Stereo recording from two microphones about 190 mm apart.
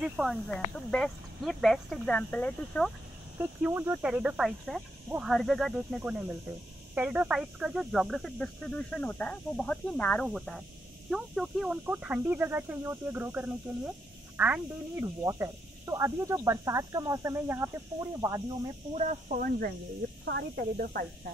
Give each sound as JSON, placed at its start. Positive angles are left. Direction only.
{"t": 0.0, "sound": "speech", "side_deg": 0}
{"t": 3.3, "sound": "speech", "side_deg": -10}
{"t": 18.9, "sound": "speech", "side_deg": -40}